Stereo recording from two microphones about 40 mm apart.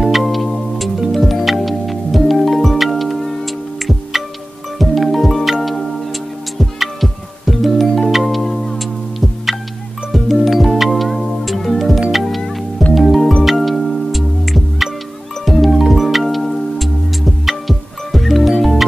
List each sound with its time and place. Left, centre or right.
0.0 s music: centre